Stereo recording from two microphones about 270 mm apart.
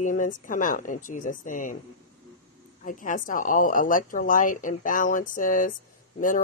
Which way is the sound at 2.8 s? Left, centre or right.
Left.